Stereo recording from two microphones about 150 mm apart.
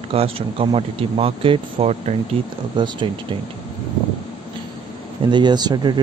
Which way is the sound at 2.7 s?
30° right (ahead or behind).